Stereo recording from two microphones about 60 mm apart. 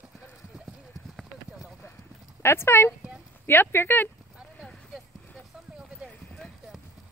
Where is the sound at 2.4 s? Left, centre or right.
Left.